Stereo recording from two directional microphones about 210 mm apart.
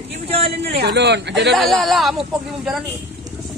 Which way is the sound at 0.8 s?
50° right (ahead or behind).